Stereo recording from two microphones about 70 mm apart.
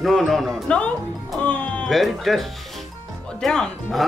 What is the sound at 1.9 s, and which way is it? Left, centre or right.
A woman's voice, centre.